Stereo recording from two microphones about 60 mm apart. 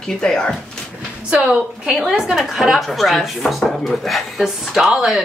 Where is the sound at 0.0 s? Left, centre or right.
Centre.